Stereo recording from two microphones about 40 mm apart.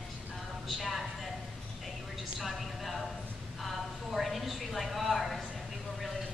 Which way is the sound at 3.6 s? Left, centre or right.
Centre.